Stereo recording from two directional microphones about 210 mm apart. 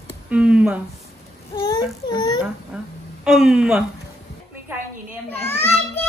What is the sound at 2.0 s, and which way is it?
Speech, 20° left (ahead or behind).